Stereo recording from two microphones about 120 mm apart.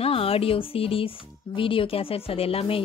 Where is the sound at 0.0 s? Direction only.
50° left (ahead or behind).